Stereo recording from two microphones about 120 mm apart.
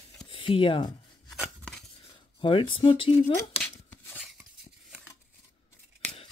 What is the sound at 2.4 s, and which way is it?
Speech, 45° left (ahead or behind).